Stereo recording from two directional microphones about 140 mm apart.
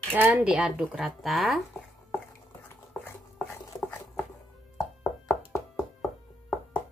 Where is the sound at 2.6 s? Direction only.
15° left (ahead or behind).